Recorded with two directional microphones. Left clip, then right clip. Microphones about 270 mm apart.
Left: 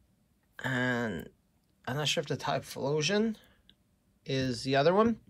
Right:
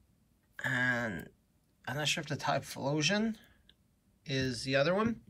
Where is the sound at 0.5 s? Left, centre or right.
Centre.